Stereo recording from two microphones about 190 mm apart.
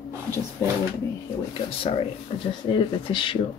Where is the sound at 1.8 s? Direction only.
30° left (ahead or behind).